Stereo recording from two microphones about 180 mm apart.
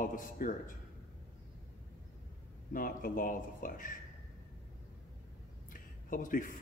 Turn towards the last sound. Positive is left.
turn(degrees=50)  # may be behind; listen again after turning